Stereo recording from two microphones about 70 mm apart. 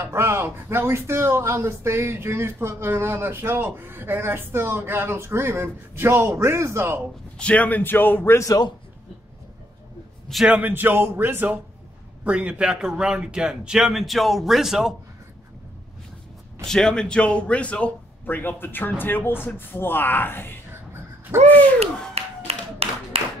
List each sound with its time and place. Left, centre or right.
0.0 s speech: right
7.3 s a man's voice: centre; by 8.5 s left
8.5 s a man's voice: left
10.4 s speech: right
12.3 s a man's voice: centre
16.6 s a man's voice: centre; by 20.5 s left
21.3 s speech: right